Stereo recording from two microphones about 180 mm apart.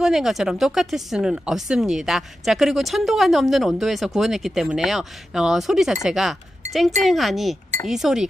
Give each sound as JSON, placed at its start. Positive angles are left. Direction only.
{"t": 0.0, "sound": "speech", "side_deg": 0}